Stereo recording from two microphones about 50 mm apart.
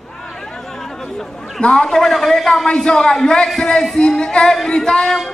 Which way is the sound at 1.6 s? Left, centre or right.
Centre.